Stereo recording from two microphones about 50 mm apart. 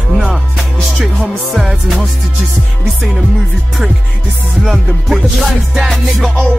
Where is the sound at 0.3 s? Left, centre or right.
Centre.